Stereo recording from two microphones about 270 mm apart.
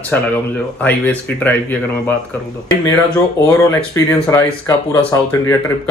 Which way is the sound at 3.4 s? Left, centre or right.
Centre.